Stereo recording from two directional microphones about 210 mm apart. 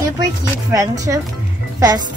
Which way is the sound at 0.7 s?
15° right (ahead or behind).